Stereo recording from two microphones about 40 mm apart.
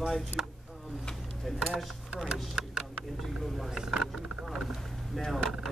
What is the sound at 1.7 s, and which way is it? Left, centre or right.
Speech, centre.